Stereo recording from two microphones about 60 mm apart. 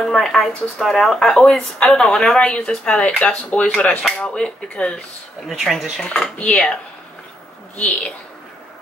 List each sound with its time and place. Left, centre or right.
0.0 s speech: centre
2.3 s speech: centre
5.5 s speech: centre
5.9 s speech: centre
7.7 s speech: left